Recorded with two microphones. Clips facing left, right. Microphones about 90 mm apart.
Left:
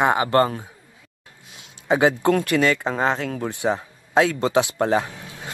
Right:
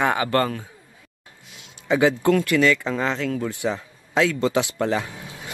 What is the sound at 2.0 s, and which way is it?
Speech, 55° left (ahead or behind).